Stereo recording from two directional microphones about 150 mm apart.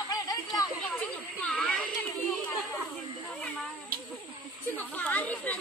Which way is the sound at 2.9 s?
Centre (ahead or behind).